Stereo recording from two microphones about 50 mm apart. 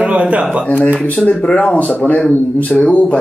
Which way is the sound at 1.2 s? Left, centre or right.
Left.